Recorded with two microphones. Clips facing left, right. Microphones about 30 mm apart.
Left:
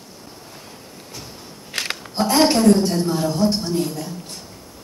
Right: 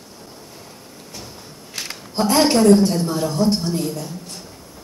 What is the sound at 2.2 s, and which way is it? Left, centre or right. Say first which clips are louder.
A woman's voice: right 1 dB; centre.